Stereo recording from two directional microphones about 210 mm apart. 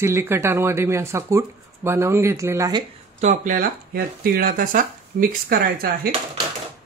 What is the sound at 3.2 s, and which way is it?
Speech, 35° right (ahead or behind).